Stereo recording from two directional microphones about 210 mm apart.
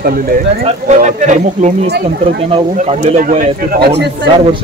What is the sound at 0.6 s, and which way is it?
Speech, 35° right (ahead or behind).